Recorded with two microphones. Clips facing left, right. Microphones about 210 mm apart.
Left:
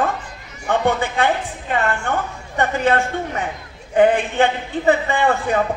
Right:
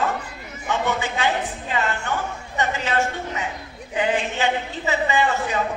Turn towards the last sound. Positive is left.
turn(degrees=55)  # may be behind; listen again after turning